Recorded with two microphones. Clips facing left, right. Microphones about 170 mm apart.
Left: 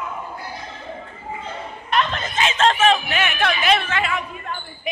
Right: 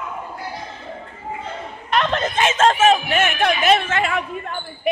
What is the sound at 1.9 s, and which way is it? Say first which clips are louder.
Snicker: right 3 dB; 65° right (ahead or behind).